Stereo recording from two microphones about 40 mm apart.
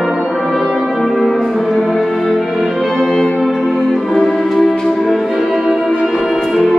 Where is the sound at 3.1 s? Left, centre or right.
Centre.